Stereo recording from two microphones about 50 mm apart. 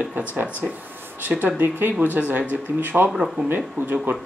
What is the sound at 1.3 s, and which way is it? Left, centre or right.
Speech, right.